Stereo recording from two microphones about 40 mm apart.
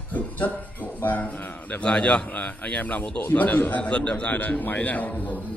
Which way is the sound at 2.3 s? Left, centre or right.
Left.